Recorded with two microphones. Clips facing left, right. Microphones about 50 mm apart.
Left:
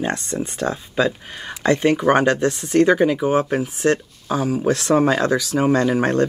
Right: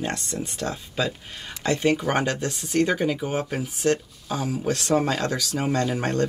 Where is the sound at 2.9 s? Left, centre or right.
Left.